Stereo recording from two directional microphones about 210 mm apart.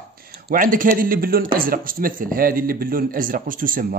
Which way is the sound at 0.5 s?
40° right (ahead or behind).